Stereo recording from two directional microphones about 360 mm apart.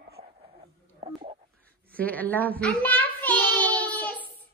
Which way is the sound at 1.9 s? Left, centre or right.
Centre.